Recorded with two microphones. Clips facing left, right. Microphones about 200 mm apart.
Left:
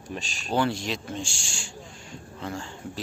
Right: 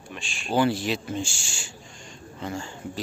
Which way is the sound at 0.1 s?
40° left (ahead or behind).